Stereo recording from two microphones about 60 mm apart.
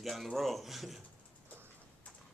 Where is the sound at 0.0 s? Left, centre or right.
Centre.